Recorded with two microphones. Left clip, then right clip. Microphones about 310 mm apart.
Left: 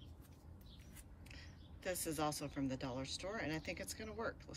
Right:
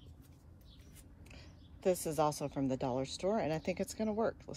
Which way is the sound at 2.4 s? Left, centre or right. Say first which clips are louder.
Right 7 dB; centre.